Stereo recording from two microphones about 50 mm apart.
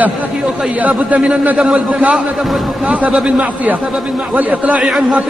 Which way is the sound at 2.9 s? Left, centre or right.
Right.